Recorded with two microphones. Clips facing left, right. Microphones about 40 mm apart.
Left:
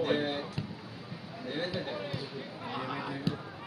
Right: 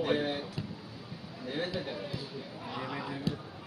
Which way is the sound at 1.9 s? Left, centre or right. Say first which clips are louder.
Left 2 dB; centre.